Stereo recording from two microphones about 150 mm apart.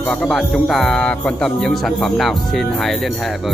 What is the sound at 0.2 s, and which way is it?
Speech, centre (ahead or behind).